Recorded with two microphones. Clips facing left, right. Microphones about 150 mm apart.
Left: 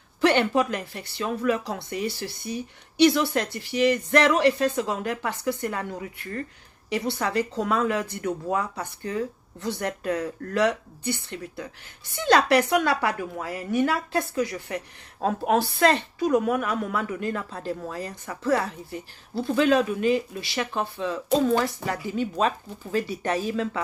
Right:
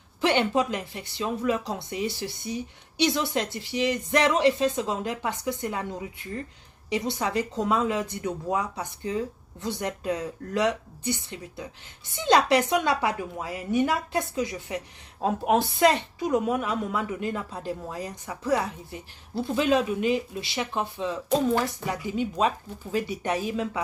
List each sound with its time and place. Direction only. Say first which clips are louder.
0.2 s a woman's voice: left 2 dB; 20° right (ahead or behind)